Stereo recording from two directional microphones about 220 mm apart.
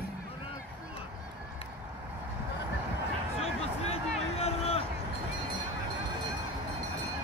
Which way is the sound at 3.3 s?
25° left (ahead or behind).